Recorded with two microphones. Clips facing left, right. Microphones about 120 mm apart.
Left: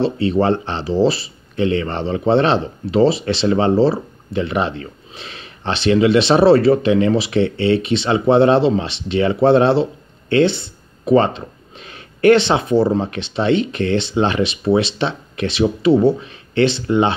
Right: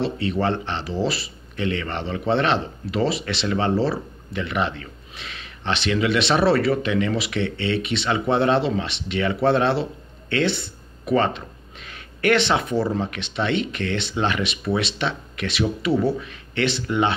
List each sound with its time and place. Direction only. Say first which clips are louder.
0.0 s speech: left 6 dB; 30° left (ahead or behind)
11.1 s speech: left 6 dB; 30° left (ahead or behind)